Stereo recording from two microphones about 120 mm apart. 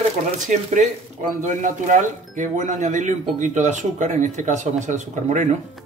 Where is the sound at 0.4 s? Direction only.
85° right.